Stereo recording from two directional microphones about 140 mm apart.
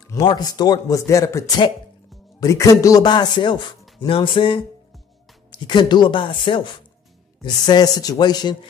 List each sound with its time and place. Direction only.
0.2 s a man's voice: 30° left (ahead or behind)